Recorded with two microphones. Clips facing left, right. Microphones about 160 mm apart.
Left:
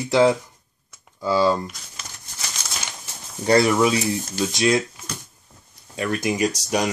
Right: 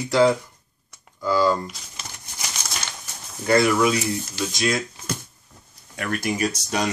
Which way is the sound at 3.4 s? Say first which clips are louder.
Left 1 dB; 30° left (ahead or behind).